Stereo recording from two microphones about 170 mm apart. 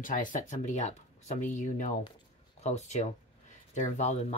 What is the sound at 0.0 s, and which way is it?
Speech, 50° left (ahead or behind).